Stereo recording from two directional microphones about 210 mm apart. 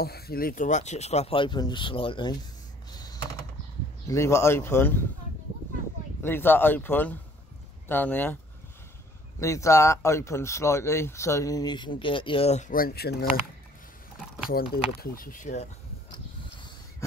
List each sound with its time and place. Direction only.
0.0 s speech: 45° left (ahead or behind); by 2.3 s 25° left (ahead or behind)
2.9 s typing: 20° left (ahead or behind)
4.1 s speech: 15° left (ahead or behind)
6.2 s speech: 10° left (ahead or behind)
9.4 s speech: 15° left (ahead or behind); by 13.3 s 50° left (ahead or behind)
14.7 s speech: 45° left (ahead or behind)